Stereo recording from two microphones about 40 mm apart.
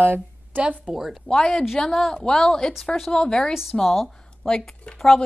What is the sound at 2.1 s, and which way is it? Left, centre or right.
A woman's voice, centre.